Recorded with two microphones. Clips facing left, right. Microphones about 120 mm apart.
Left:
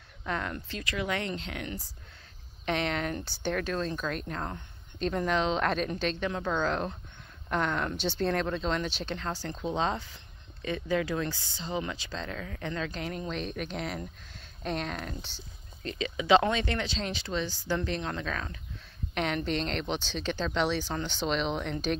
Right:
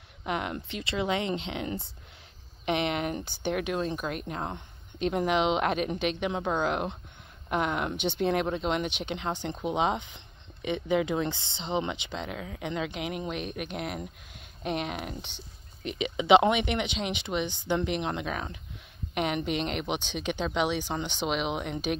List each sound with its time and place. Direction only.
0.2 s speech: 20° right (ahead or behind)